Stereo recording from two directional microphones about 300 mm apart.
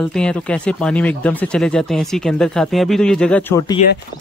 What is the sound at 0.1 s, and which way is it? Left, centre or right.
Speech, centre.